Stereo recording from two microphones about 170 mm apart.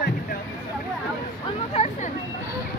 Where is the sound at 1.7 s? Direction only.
40° left (ahead or behind).